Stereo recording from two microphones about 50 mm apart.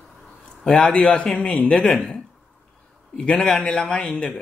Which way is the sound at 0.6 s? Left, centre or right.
Centre.